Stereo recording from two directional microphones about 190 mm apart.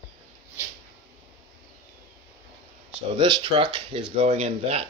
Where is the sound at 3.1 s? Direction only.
30° right (ahead or behind).